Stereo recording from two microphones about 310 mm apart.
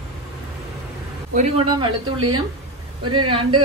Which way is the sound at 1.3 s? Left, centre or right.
Centre.